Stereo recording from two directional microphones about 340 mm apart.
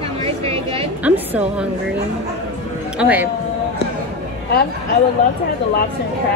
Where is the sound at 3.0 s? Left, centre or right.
Centre.